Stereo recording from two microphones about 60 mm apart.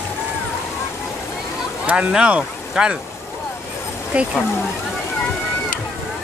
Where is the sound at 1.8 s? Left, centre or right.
Centre.